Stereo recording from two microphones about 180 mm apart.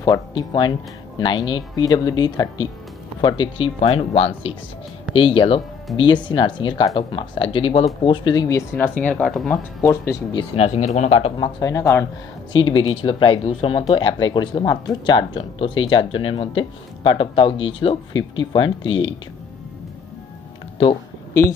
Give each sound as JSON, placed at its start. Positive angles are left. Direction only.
{"t": 0.0, "sound": "speech", "side_deg": 20}
{"t": 10.3, "sound": "speech", "side_deg": 35}
{"t": 12.5, "sound": "speech", "side_deg": 30}
{"t": 21.3, "sound": "speech", "side_deg": 15}